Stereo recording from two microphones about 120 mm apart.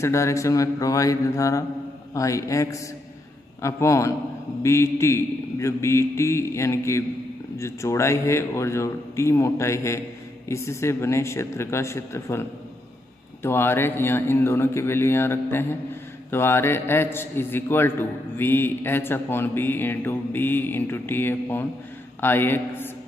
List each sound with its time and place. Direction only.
0.0 s a man's voice: 25° left (ahead or behind)